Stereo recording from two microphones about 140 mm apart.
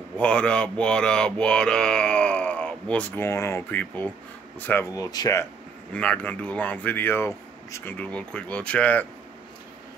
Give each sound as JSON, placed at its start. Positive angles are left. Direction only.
{"t": 0.2, "sound": "speech", "side_deg": 5}
{"t": 4.9, "sound": "speech", "side_deg": 25}
{"t": 5.9, "sound": "speech", "side_deg": 10}